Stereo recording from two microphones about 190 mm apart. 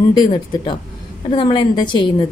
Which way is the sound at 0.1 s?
25° left (ahead or behind).